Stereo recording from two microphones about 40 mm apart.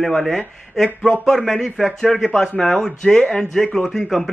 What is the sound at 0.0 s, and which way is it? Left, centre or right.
Speech, centre.